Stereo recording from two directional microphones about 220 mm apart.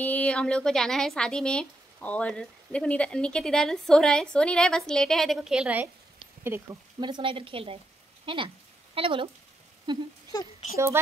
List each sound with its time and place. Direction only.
0.0 s a woman's voice: 5° left (ahead or behind); by 10.0 s 20° right (ahead or behind)
10.3 s speech: 15° left (ahead or behind)